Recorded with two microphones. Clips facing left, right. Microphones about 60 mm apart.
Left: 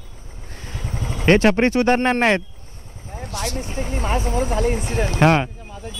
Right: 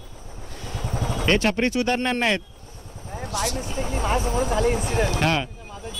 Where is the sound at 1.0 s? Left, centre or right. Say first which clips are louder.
Right 3 dB; right.